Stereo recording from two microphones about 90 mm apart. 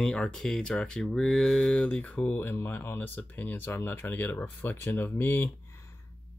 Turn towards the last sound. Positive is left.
turn(degrees=25)  # may be behind; listen again after turning